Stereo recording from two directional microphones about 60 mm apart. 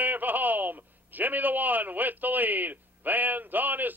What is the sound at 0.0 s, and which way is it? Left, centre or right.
A man's voice, right.